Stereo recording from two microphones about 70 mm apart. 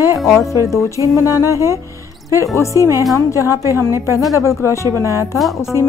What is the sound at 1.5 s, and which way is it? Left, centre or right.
Speech, right.